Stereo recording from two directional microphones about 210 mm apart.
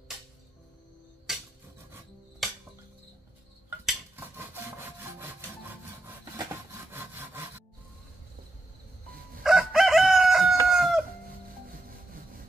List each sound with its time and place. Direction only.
1.3 s a sound: centre (ahead or behind)
2.4 s music: centre (ahead or behind)
4.7 s sawing: 10° right (ahead or behind)
9.4 s chicken: centre (ahead or behind)